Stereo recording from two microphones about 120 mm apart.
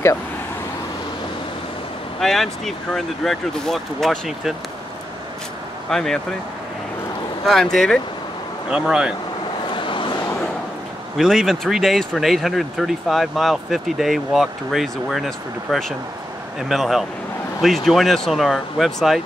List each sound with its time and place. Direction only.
2.1 s speech: centre (ahead or behind)
5.9 s speech: 5° left (ahead or behind)
7.4 s speech: centre (ahead or behind)
9.7 s vehicle: 45° left (ahead or behind)
11.1 s speech: centre (ahead or behind)